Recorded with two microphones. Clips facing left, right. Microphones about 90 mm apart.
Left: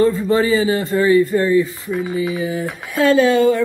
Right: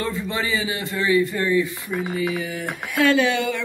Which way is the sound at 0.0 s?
40° left (ahead or behind).